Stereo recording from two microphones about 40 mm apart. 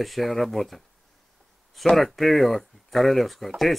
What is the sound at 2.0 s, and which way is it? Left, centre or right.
Speech, centre.